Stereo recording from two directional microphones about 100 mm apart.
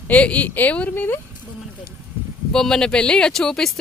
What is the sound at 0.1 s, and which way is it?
Speech, 15° left (ahead or behind).